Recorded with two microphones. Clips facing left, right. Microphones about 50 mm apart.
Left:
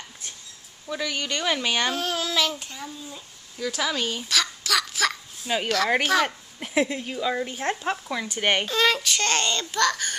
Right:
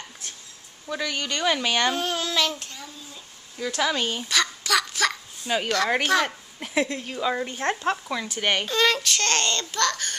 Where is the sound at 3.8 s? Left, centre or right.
Centre.